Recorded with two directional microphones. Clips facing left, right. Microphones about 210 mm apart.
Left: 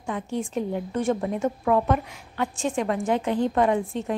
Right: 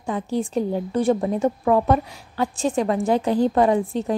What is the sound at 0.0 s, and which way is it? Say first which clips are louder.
A woman's voice: right 4 dB; 35° right (ahead or behind).